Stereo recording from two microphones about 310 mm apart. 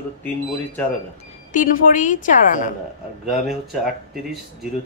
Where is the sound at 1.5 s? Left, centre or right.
Left.